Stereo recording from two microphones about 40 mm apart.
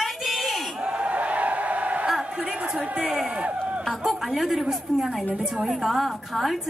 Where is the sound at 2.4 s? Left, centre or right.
Right.